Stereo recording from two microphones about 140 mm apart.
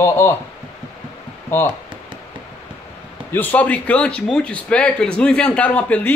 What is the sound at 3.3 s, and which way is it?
Speech, 10° left (ahead or behind).